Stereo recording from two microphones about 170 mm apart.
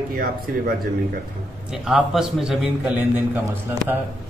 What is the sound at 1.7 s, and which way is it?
Speech, 5° right (ahead or behind).